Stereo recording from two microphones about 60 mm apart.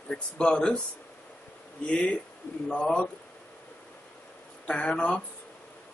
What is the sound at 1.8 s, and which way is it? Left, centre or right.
Speech, centre.